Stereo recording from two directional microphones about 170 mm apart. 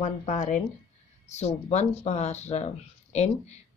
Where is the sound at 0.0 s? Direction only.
45° left (ahead or behind).